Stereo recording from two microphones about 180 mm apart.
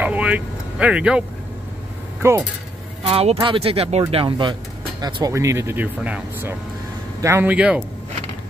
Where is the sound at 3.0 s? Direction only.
35° right (ahead or behind); by 7.8 s 5° right (ahead or behind).